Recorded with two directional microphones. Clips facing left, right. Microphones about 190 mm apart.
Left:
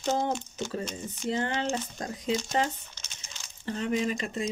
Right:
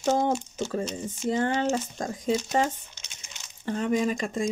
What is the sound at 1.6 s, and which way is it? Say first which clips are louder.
Speech: right 4 dB; 45° right (ahead or behind).